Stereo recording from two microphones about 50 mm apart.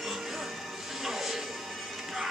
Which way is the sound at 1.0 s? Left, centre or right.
Centre.